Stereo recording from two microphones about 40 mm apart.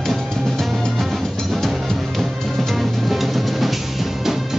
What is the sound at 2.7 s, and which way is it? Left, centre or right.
Music, centre.